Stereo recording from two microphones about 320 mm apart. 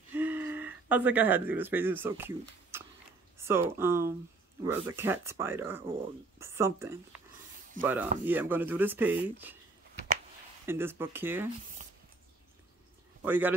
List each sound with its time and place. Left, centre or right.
0.1 s speech: centre
10.7 s speech: centre
11.8 s squish: right
13.2 s speech: centre